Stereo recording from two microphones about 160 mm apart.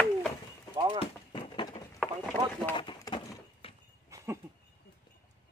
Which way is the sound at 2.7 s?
30° left (ahead or behind).